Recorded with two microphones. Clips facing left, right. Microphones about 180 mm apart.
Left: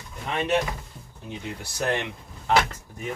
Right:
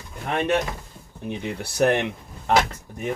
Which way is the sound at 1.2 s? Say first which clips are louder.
Right 6 dB; 60° right (ahead or behind).